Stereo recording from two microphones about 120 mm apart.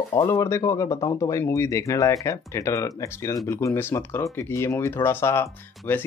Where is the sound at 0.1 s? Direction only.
25° left (ahead or behind).